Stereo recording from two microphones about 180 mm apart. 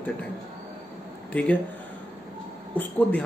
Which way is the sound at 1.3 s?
5° left (ahead or behind).